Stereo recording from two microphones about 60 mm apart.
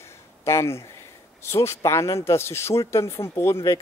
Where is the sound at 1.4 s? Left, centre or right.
Left.